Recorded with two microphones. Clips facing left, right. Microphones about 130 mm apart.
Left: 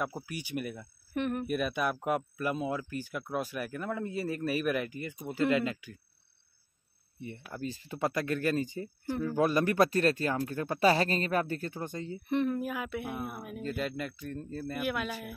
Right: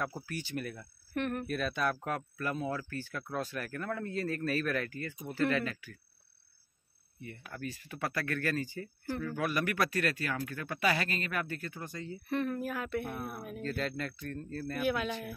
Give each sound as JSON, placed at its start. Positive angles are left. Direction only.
{"t": 0.0, "sound": "speech", "side_deg": 10}
{"t": 7.5, "sound": "speech", "side_deg": 25}
{"t": 9.3, "sound": "speech", "side_deg": 30}